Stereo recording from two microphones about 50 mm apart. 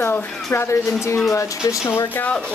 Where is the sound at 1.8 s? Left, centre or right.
Left.